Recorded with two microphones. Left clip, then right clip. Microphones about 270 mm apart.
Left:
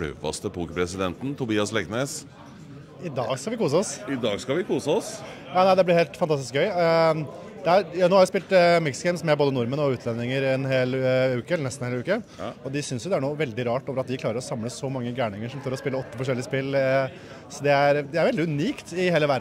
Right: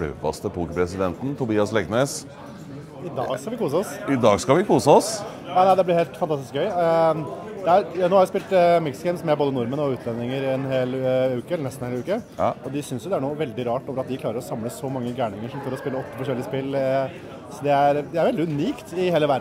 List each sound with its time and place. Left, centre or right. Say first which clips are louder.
0.0 s speech: right 4 dB; centre
3.2 s speech: even; left
4.1 s speech: right 11 dB; right
5.5 s speech: right 1 dB; left
12.7 s speech: right 1 dB; left